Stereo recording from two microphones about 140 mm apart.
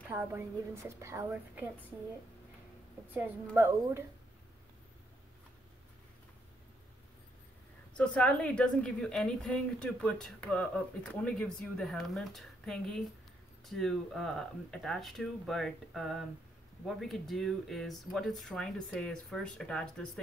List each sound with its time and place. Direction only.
0.1 s a woman's voice: 15° right (ahead or behind)
3.1 s a woman's voice: 10° right (ahead or behind)
8.0 s a woman's voice: 10° left (ahead or behind)